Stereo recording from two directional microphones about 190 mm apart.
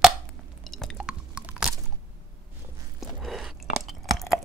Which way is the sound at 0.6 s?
Centre (ahead or behind).